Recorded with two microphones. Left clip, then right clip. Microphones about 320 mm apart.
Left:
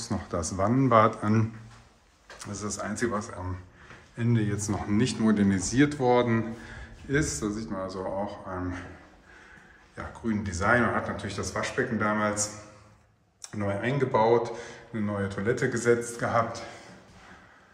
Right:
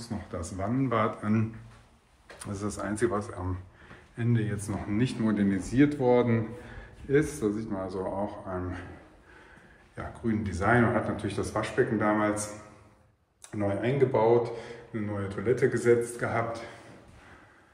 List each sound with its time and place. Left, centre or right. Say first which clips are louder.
0.3 s speech: left 6 dB; centre
2.4 s speech: even; centre
9.9 s speech: even; centre
13.6 s speech: right 2 dB; centre
15.6 s speech: right 2 dB; centre